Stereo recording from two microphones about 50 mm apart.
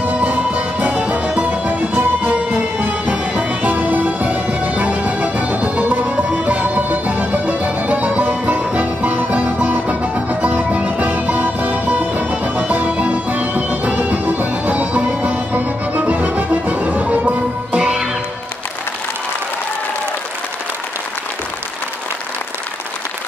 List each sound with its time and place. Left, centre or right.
0.0 s music: right